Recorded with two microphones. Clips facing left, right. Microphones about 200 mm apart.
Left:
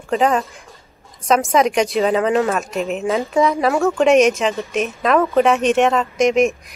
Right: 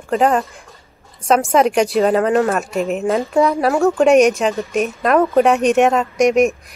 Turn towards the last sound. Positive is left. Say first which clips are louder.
# right 2 dB
turn(degrees=0)  # may be behind; listen again after turning